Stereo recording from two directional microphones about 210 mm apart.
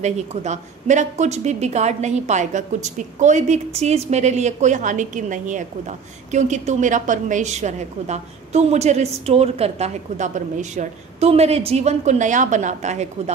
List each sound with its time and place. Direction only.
0.0 s a woman's voice: 35° right (ahead or behind)